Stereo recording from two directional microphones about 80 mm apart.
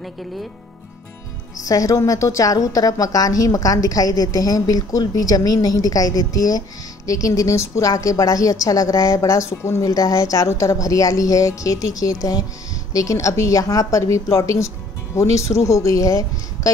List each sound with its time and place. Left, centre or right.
1.6 s a woman's voice: left